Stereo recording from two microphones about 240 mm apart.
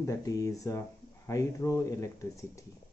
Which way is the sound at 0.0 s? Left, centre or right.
Centre.